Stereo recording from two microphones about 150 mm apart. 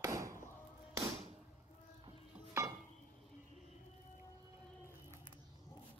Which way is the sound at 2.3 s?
20° right (ahead or behind).